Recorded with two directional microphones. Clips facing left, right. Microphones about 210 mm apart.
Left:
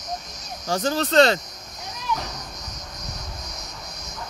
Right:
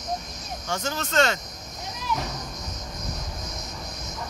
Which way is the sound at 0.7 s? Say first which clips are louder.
Left 7 dB; 35° left (ahead or behind).